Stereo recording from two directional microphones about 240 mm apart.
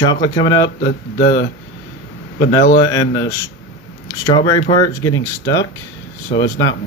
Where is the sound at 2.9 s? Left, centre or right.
Centre.